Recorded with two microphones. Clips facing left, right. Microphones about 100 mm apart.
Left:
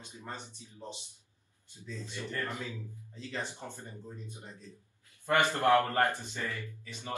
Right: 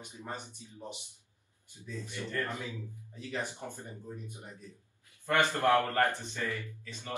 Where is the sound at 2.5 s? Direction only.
15° right (ahead or behind).